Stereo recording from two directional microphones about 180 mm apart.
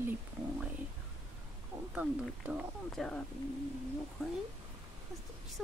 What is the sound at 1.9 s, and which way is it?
Speech, 5° right (ahead or behind).